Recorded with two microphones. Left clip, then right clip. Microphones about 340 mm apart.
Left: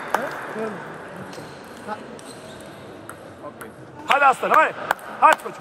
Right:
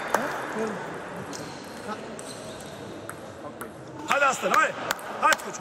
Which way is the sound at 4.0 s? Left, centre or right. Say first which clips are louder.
Left 6 dB; centre.